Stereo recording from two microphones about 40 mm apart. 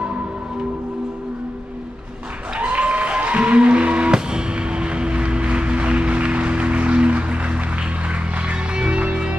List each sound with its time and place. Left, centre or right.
2.7 s music: right